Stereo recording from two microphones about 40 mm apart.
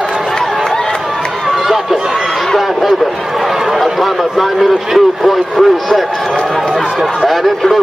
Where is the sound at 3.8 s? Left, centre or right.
Centre.